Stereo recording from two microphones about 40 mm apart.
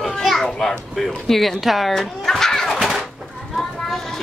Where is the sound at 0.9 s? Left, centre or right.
Centre.